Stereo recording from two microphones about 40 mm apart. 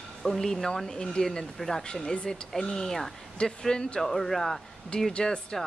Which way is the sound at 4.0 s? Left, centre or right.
Centre.